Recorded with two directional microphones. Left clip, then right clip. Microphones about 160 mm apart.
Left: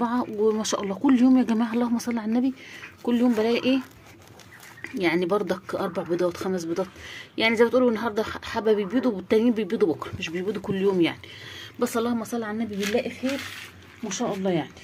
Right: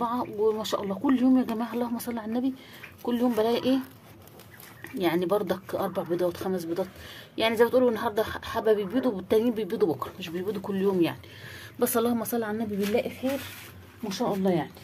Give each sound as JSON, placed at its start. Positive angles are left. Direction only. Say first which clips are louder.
{"t": 0.0, "sound": "speech", "louder": "left 2 dB", "side_deg": 20}
{"t": 4.9, "sound": "speech", "louder": "left 2 dB", "side_deg": 10}
{"t": 14.2, "sound": "speech", "louder": "even", "side_deg": 15}